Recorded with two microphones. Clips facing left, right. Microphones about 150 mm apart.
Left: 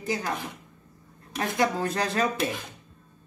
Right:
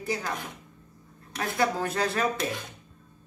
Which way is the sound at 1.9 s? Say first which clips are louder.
Left 1 dB; 15° left (ahead or behind).